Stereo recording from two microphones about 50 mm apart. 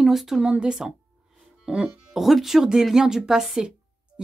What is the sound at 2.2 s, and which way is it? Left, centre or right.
Speech, centre.